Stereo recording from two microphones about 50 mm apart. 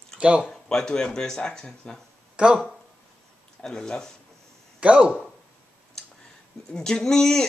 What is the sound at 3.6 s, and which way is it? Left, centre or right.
Speech, centre.